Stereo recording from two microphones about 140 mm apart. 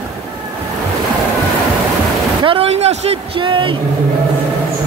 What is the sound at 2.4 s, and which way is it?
Speech, 40° right (ahead or behind).